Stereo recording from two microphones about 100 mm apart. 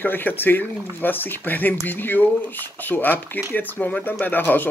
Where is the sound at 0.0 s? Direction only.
20° left (ahead or behind).